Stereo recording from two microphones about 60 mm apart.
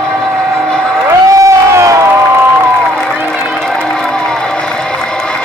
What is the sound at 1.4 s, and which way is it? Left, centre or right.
Crowd, right.